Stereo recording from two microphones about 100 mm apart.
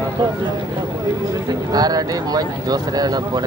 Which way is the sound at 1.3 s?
35° right (ahead or behind).